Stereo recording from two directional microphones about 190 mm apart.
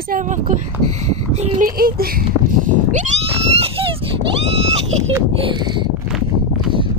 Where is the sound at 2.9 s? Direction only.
35° right (ahead or behind).